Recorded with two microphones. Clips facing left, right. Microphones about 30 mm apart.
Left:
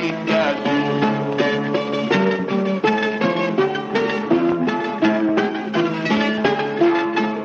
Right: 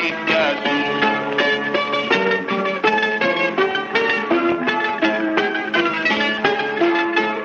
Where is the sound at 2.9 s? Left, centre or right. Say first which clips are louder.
Right 3 dB; centre.